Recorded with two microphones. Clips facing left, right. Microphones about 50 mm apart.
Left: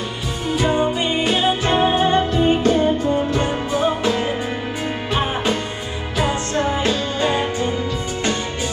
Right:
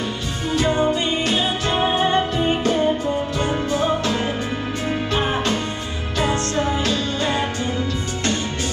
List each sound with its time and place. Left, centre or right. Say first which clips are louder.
0.6 s music: even; centre
3.3 s music: left 1 dB; centre
6.1 s music: even; centre